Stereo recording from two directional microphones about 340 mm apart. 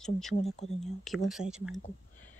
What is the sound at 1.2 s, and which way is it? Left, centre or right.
Speech, centre.